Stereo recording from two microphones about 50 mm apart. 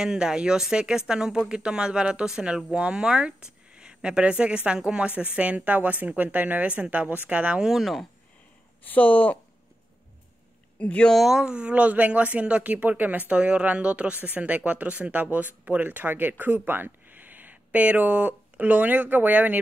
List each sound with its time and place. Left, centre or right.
0.0 s speech: centre
5.8 s speech: right
7.6 s speech: centre
8.8 s speech: left
10.8 s speech: left
11.1 s speech: centre; by 19.6 s right